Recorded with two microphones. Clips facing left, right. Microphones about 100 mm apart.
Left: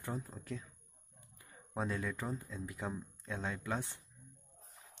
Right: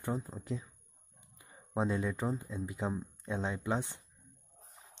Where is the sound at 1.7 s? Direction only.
20° right (ahead or behind).